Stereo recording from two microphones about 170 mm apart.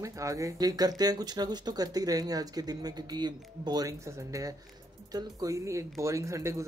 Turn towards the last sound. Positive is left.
turn(degrees=-15)  # may be behind; listen again after turning